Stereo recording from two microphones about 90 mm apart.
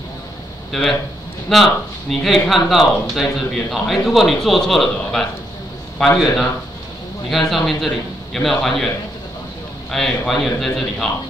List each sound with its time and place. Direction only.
0.7 s speech: centre (ahead or behind)
7.2 s speech: centre (ahead or behind)